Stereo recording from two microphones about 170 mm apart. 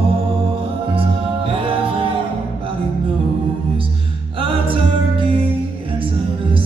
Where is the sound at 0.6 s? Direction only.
30° right (ahead or behind).